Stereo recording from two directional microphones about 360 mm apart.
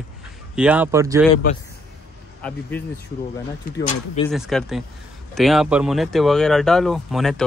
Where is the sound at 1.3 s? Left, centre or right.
Centre.